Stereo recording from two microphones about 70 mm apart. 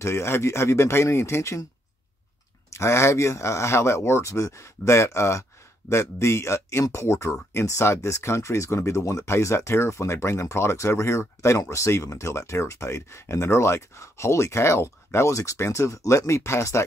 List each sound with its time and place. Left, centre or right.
0.0 s speech: left
2.7 s speech: left